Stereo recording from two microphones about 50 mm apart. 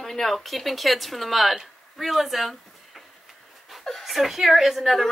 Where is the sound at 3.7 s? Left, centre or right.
Centre.